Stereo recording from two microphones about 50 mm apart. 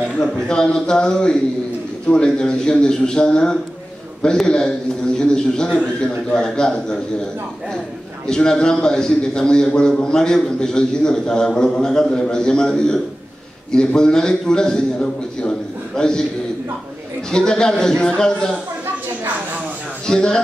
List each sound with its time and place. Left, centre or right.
0.2 s a man's voice: centre
8.3 s a man's voice: centre
17.3 s a man's voice: centre
20.1 s a man's voice: centre